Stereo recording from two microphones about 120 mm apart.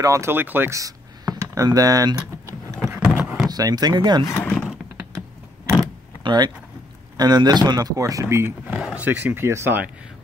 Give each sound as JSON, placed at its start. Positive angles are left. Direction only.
{"t": 0.0, "sound": "speech", "side_deg": -25}
{"t": 3.2, "sound": "door", "side_deg": -5}
{"t": 3.4, "sound": "speech", "side_deg": -35}
{"t": 4.3, "sound": "speech", "side_deg": 20}
{"t": 6.2, "sound": "speech", "side_deg": -35}
{"t": 8.7, "sound": "speech", "side_deg": -10}